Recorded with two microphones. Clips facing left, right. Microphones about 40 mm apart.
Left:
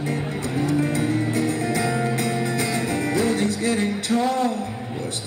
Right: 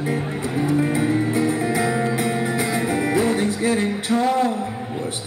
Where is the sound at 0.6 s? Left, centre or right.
Centre.